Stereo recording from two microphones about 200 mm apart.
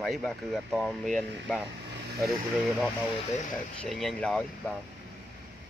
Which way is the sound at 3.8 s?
Centre (ahead or behind).